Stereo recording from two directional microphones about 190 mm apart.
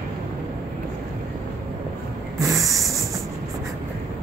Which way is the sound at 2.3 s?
15° right (ahead or behind).